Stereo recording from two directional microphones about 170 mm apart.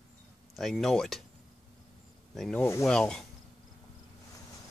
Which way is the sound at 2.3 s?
5° left (ahead or behind).